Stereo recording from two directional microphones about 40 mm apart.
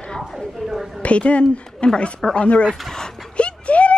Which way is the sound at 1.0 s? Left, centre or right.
Left.